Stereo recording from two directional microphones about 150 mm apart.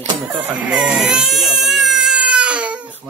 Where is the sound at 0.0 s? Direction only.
30° right (ahead or behind).